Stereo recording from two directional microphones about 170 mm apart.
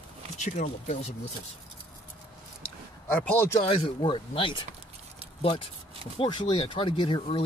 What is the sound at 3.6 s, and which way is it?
Speech, 30° left (ahead or behind).